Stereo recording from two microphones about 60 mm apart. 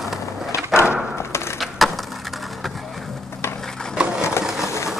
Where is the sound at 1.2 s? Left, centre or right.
Left.